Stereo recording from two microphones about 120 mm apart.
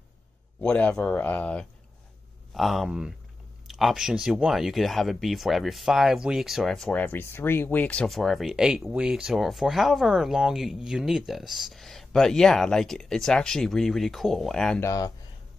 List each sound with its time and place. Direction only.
0.6 s speech: 10° left (ahead or behind)
2.5 s speech: centre (ahead or behind)
7.0 s speech: 15° left (ahead or behind)
14.8 s speech: 25° left (ahead or behind)